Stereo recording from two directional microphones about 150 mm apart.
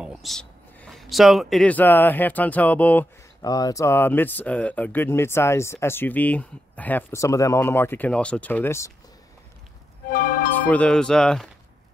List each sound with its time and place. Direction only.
0.0 s speech: centre (ahead or behind)
3.4 s speech: 25° left (ahead or behind)
10.0 s music: 70° left (ahead or behind)
10.7 s speech: 5° left (ahead or behind)